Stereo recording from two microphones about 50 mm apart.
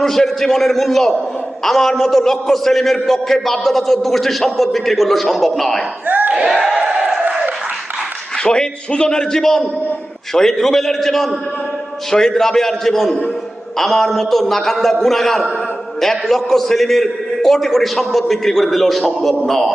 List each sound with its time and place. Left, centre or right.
0.0 s a man's voice: centre
6.0 s a sound: right
6.3 s crowd: centre
8.5 s a man's voice: centre